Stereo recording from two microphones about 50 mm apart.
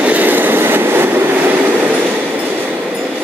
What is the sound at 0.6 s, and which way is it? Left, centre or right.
Train, right.